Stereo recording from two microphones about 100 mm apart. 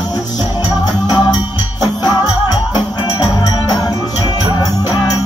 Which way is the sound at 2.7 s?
50° left (ahead or behind).